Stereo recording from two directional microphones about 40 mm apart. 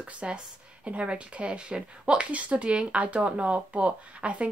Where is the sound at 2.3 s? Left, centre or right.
Right.